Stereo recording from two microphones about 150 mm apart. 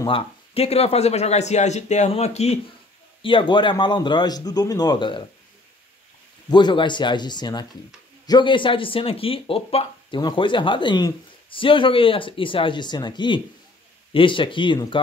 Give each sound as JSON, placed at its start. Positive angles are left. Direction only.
{"t": 0.0, "sound": "speech", "side_deg": 40}
{"t": 3.2, "sound": "a man's voice", "side_deg": 35}
{"t": 6.5, "sound": "a man's voice", "side_deg": 30}